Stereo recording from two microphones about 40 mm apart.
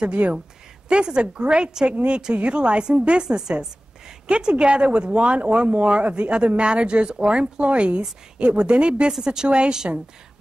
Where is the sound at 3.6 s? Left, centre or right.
Centre.